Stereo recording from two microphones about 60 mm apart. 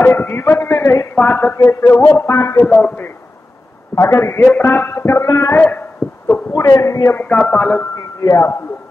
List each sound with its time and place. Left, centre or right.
0.0 s a man's voice: left
1.1 s a man's voice: left
1.6 s a man's voice: left
2.6 s a man's voice: left
3.9 s a man's voice: left
5.2 s a man's voice: left
5.6 s a sound: left
6.5 s a man's voice: left
7.2 s speech: left
7.5 s a man's voice: left
8.2 s speech: left